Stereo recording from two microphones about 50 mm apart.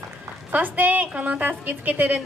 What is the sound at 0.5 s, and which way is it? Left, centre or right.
A woman's voice, right.